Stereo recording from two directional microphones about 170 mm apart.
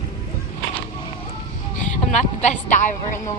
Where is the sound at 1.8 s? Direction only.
45° left (ahead or behind).